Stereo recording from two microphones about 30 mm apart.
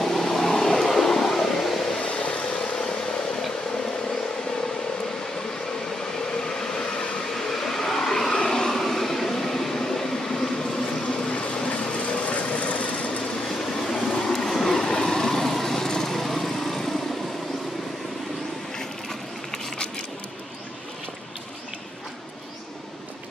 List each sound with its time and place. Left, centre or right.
0.0 s vehicle: centre
2.0 s vehicle: left
2.5 s vehicle: left
6.4 s train: left
7.3 s vehicle: centre
11.3 s vehicle: left
13.5 s train: centre
13.9 s train: left
14.2 s train: centre
18.8 s a sound: centre